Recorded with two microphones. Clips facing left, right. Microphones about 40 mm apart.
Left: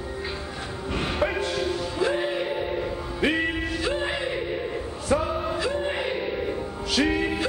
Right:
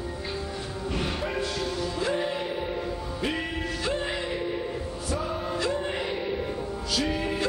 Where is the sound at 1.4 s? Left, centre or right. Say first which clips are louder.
Left 3 dB; centre.